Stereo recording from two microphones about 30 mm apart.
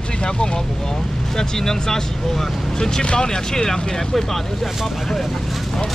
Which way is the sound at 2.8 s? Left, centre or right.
Left.